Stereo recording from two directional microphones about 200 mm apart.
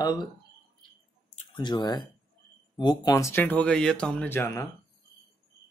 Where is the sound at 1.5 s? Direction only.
20° left (ahead or behind).